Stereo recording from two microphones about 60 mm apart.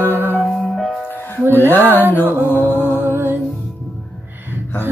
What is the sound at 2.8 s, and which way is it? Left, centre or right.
Music, right.